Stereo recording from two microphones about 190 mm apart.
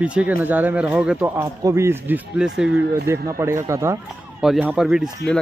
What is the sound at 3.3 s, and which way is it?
Speech, 15° right (ahead or behind).